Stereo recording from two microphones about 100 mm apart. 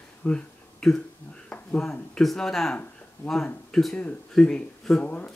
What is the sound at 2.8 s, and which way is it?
Speech, 10° left (ahead or behind).